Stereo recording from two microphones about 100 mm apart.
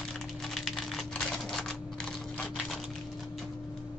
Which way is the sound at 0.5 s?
5° left (ahead or behind).